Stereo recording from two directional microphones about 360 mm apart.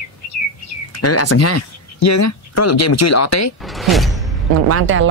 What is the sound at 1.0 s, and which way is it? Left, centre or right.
Speech, left.